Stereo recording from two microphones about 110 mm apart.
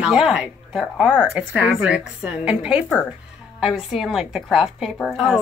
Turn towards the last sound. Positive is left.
turn(degrees=0)  # may be behind; listen again after turning